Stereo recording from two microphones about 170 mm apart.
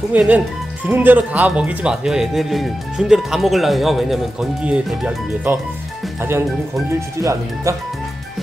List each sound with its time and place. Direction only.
0.1 s speech: 10° right (ahead or behind)
7.2 s speech: 15° right (ahead or behind)